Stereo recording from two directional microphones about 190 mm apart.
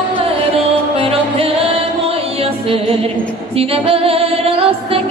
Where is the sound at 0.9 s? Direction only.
30° right (ahead or behind).